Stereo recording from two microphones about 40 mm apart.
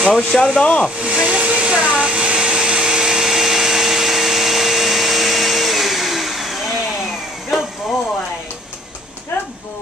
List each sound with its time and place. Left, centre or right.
0.1 s speech: centre
1.0 s hair dryer: right
1.8 s vacuum cleaner: right; by 6.6 s centre